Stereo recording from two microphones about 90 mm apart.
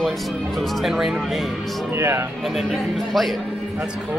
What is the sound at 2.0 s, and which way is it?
Speech, 30° right (ahead or behind).